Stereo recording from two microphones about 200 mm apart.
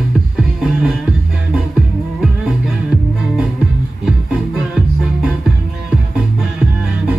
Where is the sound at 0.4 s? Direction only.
Centre (ahead or behind).